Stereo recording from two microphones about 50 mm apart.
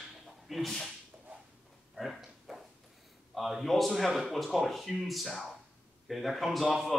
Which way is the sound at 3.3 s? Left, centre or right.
Centre.